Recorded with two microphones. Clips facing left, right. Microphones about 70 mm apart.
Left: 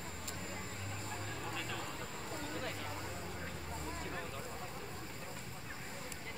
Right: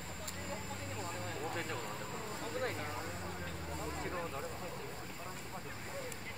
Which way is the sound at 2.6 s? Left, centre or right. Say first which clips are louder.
Right 4 dB; right.